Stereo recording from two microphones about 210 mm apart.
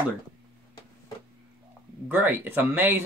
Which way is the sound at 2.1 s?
10° right (ahead or behind).